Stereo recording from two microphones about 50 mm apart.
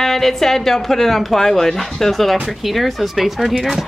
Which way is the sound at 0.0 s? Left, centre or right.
Centre.